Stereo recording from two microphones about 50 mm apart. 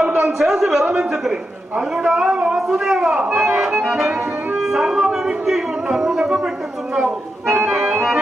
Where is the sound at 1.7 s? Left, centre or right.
Centre.